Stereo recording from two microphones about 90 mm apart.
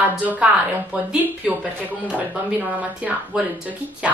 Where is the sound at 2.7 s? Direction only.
15° right (ahead or behind).